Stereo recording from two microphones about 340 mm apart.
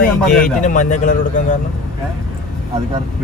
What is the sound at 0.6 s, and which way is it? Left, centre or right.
Speech, left.